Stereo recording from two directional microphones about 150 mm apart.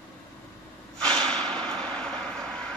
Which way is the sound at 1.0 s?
5° left (ahead or behind).